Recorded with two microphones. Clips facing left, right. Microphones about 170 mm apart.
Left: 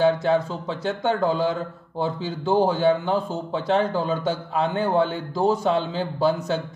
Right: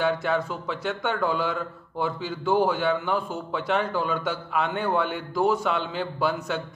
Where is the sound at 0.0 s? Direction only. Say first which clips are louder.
Left 5 dB; 30° left (ahead or behind).